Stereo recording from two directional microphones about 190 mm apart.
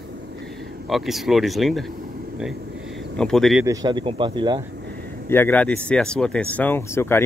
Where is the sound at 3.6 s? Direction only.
20° right (ahead or behind).